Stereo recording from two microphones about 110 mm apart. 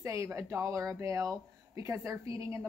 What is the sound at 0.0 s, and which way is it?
A woman's voice, 25° right (ahead or behind).